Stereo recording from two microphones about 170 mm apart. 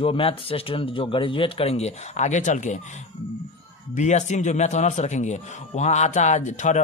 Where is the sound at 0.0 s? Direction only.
30° left (ahead or behind).